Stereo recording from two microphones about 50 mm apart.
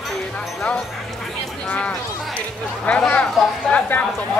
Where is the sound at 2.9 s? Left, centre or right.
Left.